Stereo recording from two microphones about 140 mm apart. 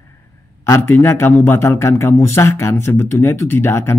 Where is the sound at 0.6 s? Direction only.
20° left (ahead or behind).